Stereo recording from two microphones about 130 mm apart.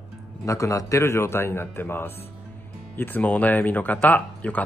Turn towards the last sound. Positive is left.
turn(degrees=10)  # may be behind; listen again after turning